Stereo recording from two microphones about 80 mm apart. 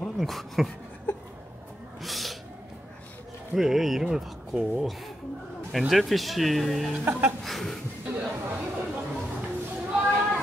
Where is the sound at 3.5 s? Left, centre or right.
Centre.